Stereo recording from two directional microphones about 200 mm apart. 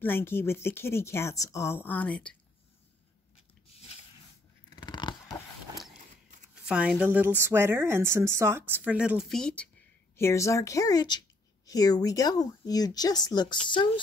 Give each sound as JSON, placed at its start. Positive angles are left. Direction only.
{"t": 0.0, "sound": "speech", "side_deg": 10}
{"t": 4.6, "sound": "a sound", "side_deg": 20}
{"t": 6.7, "sound": "a woman's voice", "side_deg": -5}
{"t": 10.1, "sound": "speech", "side_deg": 15}